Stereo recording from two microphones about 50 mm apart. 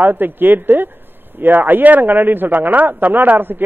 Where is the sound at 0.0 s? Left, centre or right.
Right.